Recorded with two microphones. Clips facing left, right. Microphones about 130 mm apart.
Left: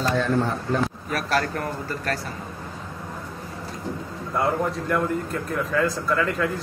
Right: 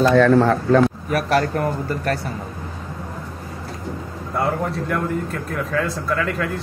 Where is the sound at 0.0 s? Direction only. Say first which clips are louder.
Right 9 dB; 75° right (ahead or behind).